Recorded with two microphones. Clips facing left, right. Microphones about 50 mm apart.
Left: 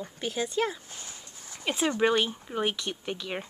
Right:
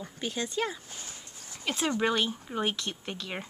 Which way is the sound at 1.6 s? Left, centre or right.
Centre.